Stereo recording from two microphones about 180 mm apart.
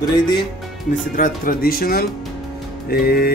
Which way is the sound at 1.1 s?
50° left (ahead or behind).